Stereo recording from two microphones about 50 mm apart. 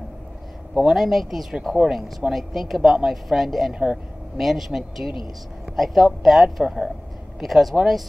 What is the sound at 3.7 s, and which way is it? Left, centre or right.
Speech, centre.